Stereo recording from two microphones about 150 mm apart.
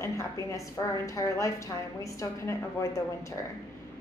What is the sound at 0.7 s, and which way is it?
A woman's voice, 20° left (ahead or behind).